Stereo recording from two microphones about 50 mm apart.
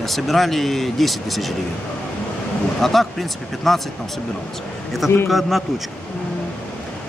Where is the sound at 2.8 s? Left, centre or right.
Centre.